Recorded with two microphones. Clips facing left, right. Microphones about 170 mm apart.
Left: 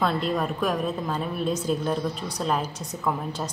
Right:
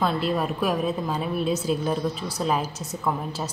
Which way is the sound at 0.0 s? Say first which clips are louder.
Right 1 dB; 5° right (ahead or behind).